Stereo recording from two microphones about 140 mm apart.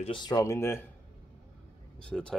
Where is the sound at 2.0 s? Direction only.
5° left (ahead or behind).